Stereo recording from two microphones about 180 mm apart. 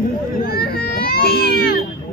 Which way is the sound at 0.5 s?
55° left (ahead or behind).